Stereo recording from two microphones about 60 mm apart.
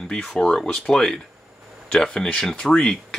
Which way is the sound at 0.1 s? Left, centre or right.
Centre.